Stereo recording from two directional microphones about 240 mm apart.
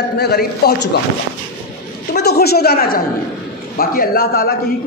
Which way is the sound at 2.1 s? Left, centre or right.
Left.